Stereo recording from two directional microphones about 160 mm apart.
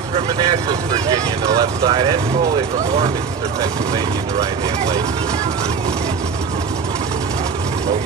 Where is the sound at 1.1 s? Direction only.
25° right (ahead or behind).